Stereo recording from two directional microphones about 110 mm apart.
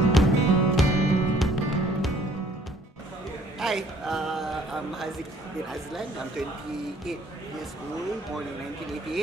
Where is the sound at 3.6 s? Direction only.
5° right (ahead or behind).